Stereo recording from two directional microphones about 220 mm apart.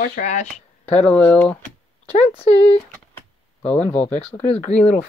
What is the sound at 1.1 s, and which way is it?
Speech, 10° left (ahead or behind).